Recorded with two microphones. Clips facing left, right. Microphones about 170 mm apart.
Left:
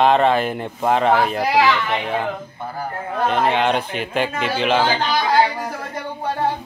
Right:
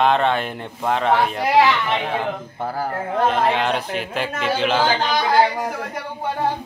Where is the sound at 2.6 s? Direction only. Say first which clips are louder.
Right 6 dB; 90° right.